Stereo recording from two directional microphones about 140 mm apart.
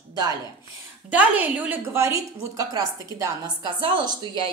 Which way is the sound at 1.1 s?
10° right (ahead or behind).